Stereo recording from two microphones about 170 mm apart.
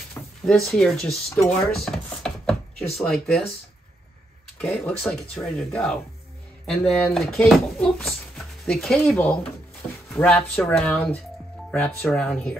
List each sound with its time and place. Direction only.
0.1 s a sound: 15° left (ahead or behind)
0.7 s speech: 5° left (ahead or behind)
1.5 s chopping: 5° left (ahead or behind)
3.0 s speech: 5° left (ahead or behind)
4.6 s speech: 5° left (ahead or behind)